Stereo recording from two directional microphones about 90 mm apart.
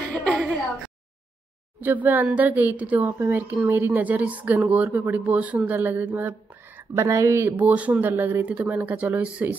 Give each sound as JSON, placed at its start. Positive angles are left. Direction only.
{"t": 0.1, "sound": "a sound", "side_deg": 15}
{"t": 1.8, "sound": "a woman's voice", "side_deg": -20}
{"t": 7.0, "sound": "speech", "side_deg": -35}
{"t": 7.5, "sound": "speech", "side_deg": -15}